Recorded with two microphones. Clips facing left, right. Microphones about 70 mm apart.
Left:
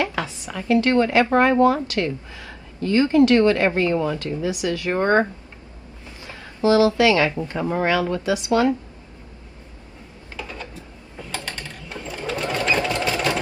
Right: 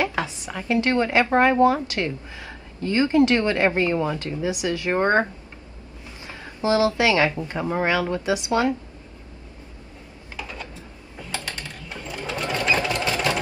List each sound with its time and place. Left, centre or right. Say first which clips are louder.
0.0 s a sound: even; right
1.3 s a woman's voice: right 1 dB; right
6.2 s a sound: left 4 dB; right
7.0 s speech: left 2 dB; right
10.3 s mechanisms: left 1 dB; centre
11.3 s a sound: even; left
12.4 s sewing machine: left 1 dB; centre
12.6 s sewing machine: left 1 dB; centre
13.1 s engine: left 1 dB; centre